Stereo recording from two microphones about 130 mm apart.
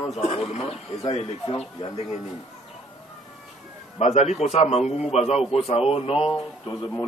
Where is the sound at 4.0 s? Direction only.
55° left (ahead or behind).